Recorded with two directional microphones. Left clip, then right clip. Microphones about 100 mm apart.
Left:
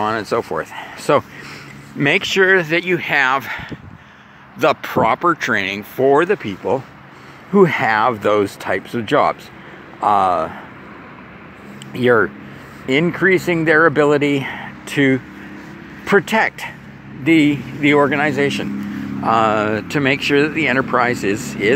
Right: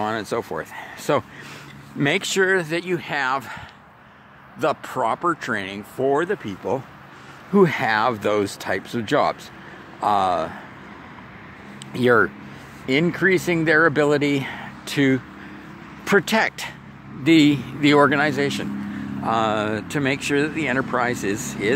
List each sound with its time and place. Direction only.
0.0 s speech: 20° right (ahead or behind)
2.4 s speech: 5° right (ahead or behind); by 6.4 s 20° left (ahead or behind)
6.6 s speech: 15° right (ahead or behind)
7.5 s speech: 25° right (ahead or behind)
11.9 s speech: 35° right (ahead or behind)
17.2 s speech: 65° right (ahead or behind)
18.3 s speech: 20° right (ahead or behind)
19.2 s speech: 5° right (ahead or behind)